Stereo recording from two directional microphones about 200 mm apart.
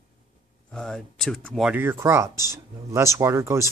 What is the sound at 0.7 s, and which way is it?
Speech, 5° left (ahead or behind).